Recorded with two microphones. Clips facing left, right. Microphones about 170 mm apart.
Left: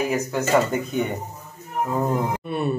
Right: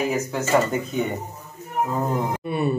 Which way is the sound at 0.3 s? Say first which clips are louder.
Left 2 dB; centre (ahead or behind).